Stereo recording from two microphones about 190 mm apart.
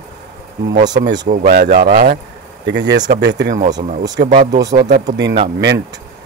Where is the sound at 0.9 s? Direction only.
65° right (ahead or behind).